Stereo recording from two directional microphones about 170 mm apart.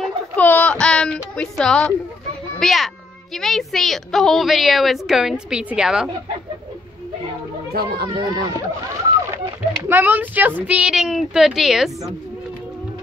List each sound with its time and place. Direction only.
0.0 s a woman's voice: 10° left (ahead or behind)
7.7 s speech: 65° right (ahead or behind)
8.1 s speech: 30° right (ahead or behind)
9.8 s a woman's voice: 10° right (ahead or behind)